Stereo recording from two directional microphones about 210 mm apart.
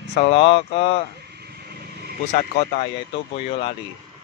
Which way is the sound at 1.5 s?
50° right (ahead or behind).